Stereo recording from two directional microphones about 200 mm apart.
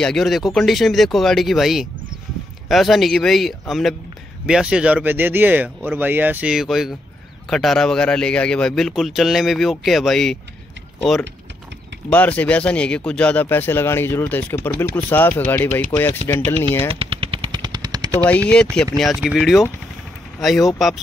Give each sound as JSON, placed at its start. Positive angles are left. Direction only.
{"t": 0.0, "sound": "speech", "side_deg": 0}
{"t": 16.9, "sound": "machine gun", "side_deg": -25}
{"t": 18.2, "sound": "speech", "side_deg": 5}